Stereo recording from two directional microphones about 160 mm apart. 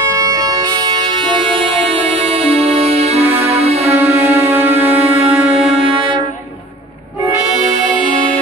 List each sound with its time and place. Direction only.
0.1 s music: 20° right (ahead or behind); by 3.9 s 40° right (ahead or behind)
4.2 s music: 15° right (ahead or behind)